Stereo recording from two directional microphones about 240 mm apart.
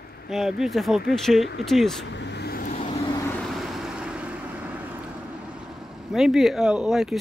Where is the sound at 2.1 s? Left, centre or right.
Left.